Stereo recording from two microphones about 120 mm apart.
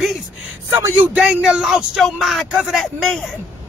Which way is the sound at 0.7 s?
20° right (ahead or behind).